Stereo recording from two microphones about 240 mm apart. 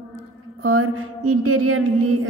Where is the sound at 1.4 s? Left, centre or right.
Right.